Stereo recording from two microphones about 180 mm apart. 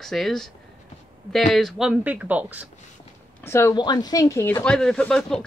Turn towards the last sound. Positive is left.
turn(degrees=5)  # may be behind; listen again after turning